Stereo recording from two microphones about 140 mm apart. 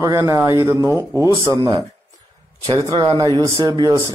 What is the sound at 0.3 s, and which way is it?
Speech, 20° right (ahead or behind).